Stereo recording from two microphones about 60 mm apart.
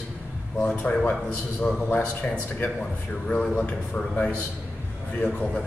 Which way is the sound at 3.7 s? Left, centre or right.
Left.